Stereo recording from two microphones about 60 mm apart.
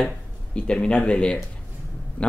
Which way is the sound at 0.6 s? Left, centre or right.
Centre.